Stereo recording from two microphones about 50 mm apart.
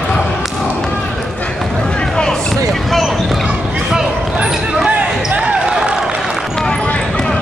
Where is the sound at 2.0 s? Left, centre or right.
Centre.